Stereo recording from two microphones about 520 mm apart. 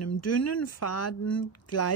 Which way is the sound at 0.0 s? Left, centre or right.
Left.